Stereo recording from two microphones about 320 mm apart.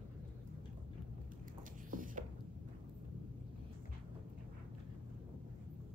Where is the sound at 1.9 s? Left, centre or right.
Right.